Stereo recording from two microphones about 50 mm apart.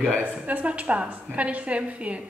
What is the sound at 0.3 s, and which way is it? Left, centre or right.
A woman's voice, right.